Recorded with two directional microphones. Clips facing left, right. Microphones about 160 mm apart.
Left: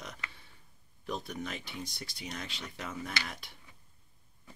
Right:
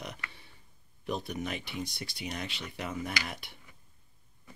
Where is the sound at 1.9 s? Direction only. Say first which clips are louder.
Right 3 dB; 65° right (ahead or behind).